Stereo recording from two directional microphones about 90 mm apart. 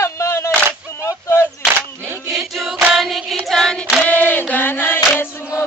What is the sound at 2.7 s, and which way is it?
Singing, 5° right (ahead or behind).